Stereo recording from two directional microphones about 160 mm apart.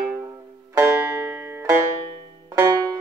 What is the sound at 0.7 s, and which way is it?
Banjo, 15° right (ahead or behind).